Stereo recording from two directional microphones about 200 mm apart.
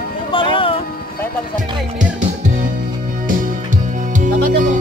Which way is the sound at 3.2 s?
40° right (ahead or behind).